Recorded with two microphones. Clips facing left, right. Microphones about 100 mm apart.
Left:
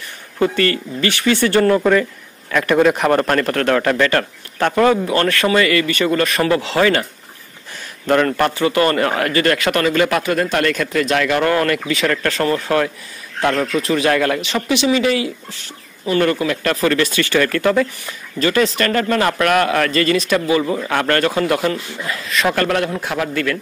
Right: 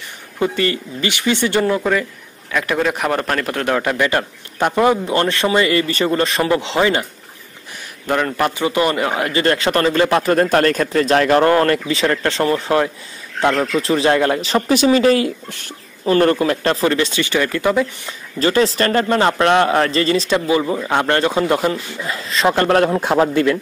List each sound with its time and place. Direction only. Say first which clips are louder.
0.4 s a man's voice: left 2 dB; 15° right (ahead or behind)
1.8 s a man's voice: left 4 dB; centre (ahead or behind); by 7.1 s 20° right (ahead or behind)
8.1 s a man's voice: left 3 dB; 5° right (ahead or behind)
9.3 s a man's voice: even; 25° right (ahead or behind)
10.3 s a man's voice: right 3 dB; 40° right (ahead or behind)
14.4 s speech: right 3 dB; 40° right (ahead or behind)
16.2 s a man's voice: right 1 dB; 35° right (ahead or behind); by 18.1 s 20° right (ahead or behind)
18.4 s a man's voice: right 1 dB; 30° right (ahead or behind)